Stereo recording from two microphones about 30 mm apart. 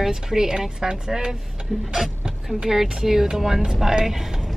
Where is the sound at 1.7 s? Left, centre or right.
Centre.